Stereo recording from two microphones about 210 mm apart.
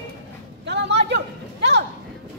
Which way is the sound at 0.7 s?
55° right (ahead or behind).